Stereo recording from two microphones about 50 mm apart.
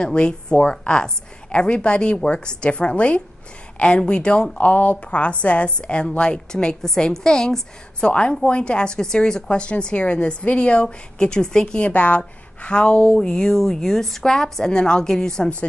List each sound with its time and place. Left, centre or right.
0.0 s a woman's voice: centre
11.9 s a woman's voice: left; by 15.5 s centre